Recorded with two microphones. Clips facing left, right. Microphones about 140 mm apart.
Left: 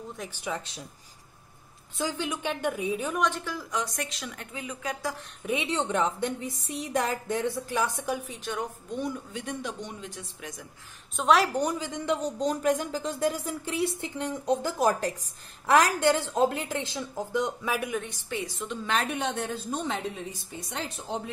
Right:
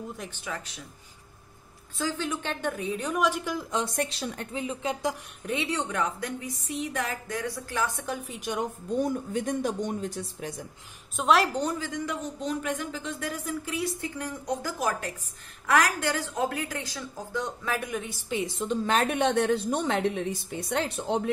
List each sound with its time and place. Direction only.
0.3 s a woman's voice: 15° left (ahead or behind)
0.6 s speech: 30° left (ahead or behind)
2.0 s a woman's voice: 15° left (ahead or behind)
3.3 s a woman's voice: 15° right (ahead or behind)
5.4 s a woman's voice: 10° left (ahead or behind)
5.7 s speech: 25° left (ahead or behind)
8.4 s a woman's voice: 15° right (ahead or behind)
8.9 s speech: 40° right (ahead or behind)
11.1 s a woman's voice: centre (ahead or behind)
11.5 s speech: 15° left (ahead or behind)
12.2 s speech: 40° left (ahead or behind); by 18.2 s centre (ahead or behind)
18.3 s speech: 25° right (ahead or behind)
19.0 s a woman's voice: 60° right (ahead or behind)